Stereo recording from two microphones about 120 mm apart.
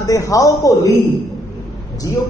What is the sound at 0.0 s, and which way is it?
Speech, 25° left (ahead or behind).